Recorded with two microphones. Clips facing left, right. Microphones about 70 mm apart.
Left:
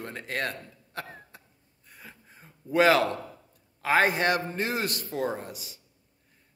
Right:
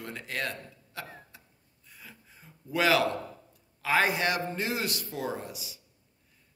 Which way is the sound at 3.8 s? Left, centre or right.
Left.